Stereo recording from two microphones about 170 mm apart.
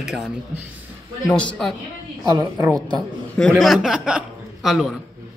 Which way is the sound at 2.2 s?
20° right (ahead or behind).